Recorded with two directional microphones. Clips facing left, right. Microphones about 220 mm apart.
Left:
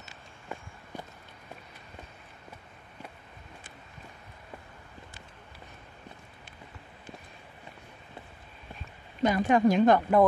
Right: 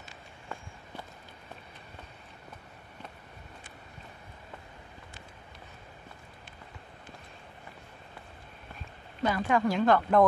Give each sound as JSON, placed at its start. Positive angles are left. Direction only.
{"t": 9.2, "sound": "a woman's voice", "side_deg": 20}